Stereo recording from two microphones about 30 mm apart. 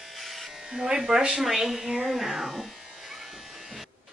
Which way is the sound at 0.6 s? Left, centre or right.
Right.